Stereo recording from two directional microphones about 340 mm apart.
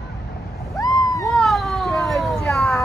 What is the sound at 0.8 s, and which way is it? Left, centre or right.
Cat, centre.